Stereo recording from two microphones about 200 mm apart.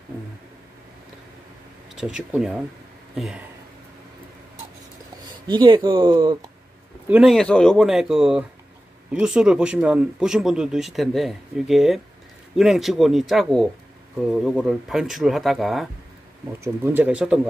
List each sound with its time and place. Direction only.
2.0 s speech: centre (ahead or behind)
5.5 s speech: 20° right (ahead or behind)
7.1 s speech: 5° right (ahead or behind)
16.6 s speech: 10° right (ahead or behind)